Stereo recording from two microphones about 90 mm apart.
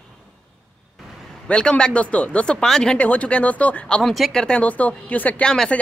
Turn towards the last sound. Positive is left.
turn(degrees=5)  # may be behind; listen again after turning